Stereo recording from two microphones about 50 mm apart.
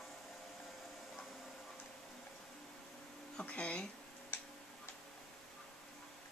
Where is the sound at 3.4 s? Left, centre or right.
Left.